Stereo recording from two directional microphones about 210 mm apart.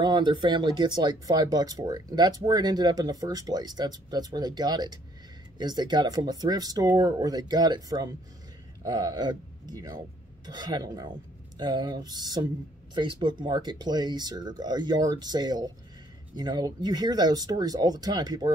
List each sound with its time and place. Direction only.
0.0 s speech: 20° right (ahead or behind)